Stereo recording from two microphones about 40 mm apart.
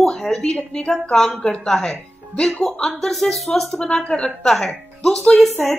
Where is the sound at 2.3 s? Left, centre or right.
Left.